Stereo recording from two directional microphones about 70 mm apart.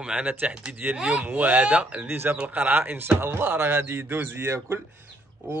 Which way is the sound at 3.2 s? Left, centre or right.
Right.